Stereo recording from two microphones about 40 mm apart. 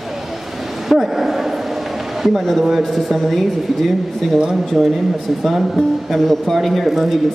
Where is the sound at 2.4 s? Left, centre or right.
Centre.